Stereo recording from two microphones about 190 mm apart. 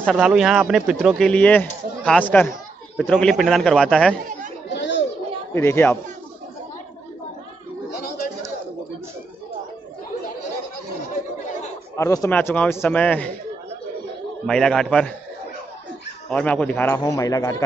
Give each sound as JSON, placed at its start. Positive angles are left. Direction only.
{"t": 0.0, "sound": "speech", "side_deg": 0}
{"t": 4.7, "sound": "chatter", "side_deg": 70}
{"t": 5.5, "sound": "speech", "side_deg": 15}
{"t": 12.0, "sound": "speech", "side_deg": 15}
{"t": 14.4, "sound": "speech", "side_deg": 5}
{"t": 16.3, "sound": "speech", "side_deg": 5}